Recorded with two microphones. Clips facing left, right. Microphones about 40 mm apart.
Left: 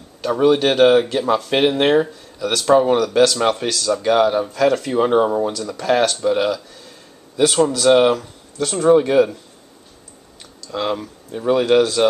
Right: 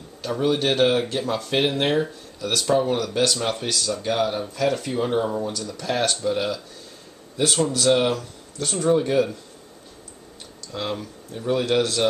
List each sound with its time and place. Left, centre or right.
0.2 s speech: left
3.0 s speech: left
3.6 s speech: left
5.0 s speech: left
7.9 s speech: left
8.5 s speech: left
10.7 s speech: left